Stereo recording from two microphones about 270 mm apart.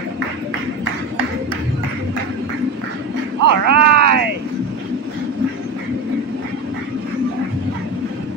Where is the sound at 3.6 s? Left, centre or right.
Right.